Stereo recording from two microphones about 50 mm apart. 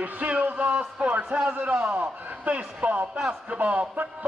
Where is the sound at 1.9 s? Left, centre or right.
Right.